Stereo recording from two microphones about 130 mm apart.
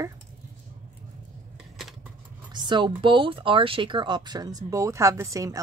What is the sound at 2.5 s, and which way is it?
Speech, 35° right (ahead or behind).